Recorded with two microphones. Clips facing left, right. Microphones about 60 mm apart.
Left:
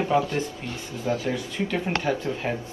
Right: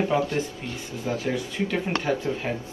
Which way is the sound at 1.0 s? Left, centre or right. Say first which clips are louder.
Left 2 dB; right.